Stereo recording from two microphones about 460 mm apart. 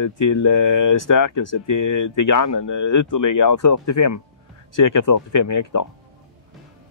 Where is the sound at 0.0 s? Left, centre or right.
Left.